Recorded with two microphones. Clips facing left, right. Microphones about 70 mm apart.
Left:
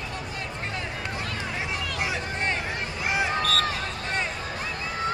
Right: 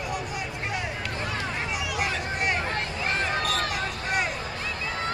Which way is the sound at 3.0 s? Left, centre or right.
Centre.